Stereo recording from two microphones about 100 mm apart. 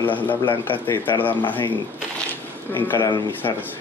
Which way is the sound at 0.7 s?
20° left (ahead or behind).